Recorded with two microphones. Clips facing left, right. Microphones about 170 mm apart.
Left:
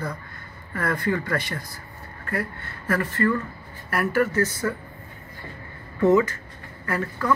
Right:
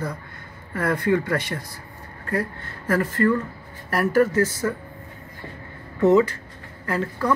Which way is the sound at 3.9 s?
40° right (ahead or behind).